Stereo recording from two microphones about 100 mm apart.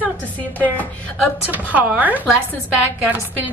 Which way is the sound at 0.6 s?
15° left (ahead or behind).